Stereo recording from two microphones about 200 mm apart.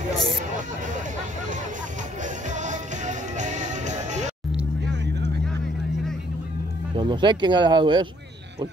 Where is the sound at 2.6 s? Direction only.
35° right (ahead or behind).